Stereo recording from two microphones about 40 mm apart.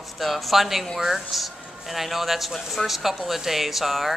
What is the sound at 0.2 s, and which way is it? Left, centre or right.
Speech, centre.